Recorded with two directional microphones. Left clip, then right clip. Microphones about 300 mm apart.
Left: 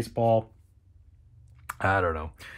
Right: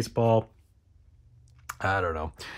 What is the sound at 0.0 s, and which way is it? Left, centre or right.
Speech, right.